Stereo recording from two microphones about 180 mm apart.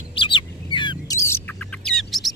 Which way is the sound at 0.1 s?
30° left (ahead or behind).